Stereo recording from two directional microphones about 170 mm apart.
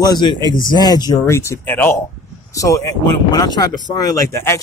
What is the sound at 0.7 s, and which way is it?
Speech, 25° left (ahead or behind).